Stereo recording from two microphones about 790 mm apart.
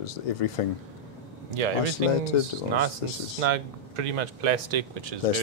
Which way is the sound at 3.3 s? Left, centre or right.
Right.